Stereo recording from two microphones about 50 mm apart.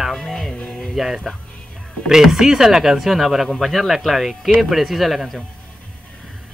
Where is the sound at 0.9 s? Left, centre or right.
Centre.